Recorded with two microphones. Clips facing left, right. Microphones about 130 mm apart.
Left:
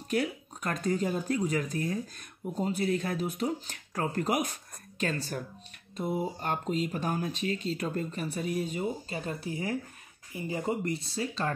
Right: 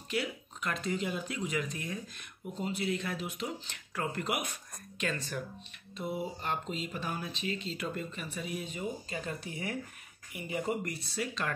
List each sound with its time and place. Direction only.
0.1 s speech: 45° left (ahead or behind); by 11.5 s 30° left (ahead or behind)